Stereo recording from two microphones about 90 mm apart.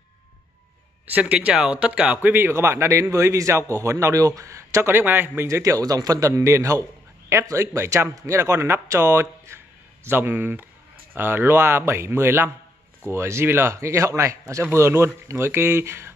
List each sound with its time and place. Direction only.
1.1 s speech: 15° right (ahead or behind)
2.3 s a man's voice: 25° right (ahead or behind)